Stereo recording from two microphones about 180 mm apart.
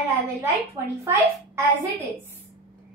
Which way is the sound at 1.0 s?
15° right (ahead or behind).